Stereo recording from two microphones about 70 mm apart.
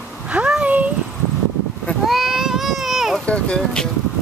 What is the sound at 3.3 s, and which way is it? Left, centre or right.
Music, centre.